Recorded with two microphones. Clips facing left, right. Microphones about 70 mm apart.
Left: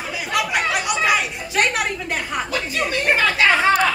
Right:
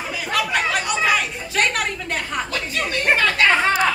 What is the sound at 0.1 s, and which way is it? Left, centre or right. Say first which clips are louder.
Chatter: even; centre.